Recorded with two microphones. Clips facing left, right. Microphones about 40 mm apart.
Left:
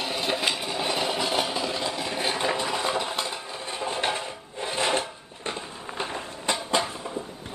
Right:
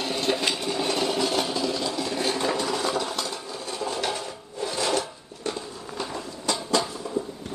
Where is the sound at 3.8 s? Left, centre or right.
Left.